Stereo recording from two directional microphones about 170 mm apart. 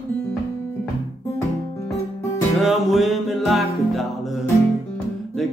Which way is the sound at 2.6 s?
Centre (ahead or behind).